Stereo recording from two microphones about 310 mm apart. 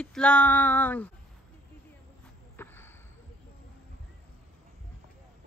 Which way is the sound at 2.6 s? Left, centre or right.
Centre.